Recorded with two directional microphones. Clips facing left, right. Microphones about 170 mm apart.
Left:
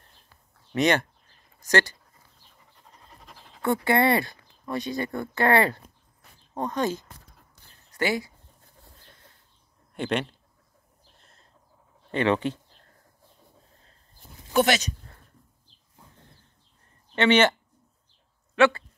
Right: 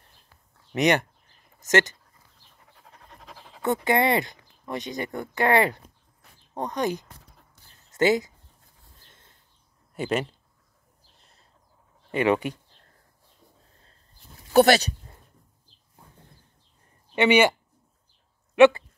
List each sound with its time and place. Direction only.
0.7 s speech: 15° right (ahead or behind)
3.6 s speech: 20° right (ahead or behind)
9.9 s speech: 5° right (ahead or behind)
12.1 s speech: 10° right (ahead or behind)
14.5 s speech: 35° right (ahead or behind)
17.1 s speech: 10° right (ahead or behind)
18.5 s a sound: 20° right (ahead or behind)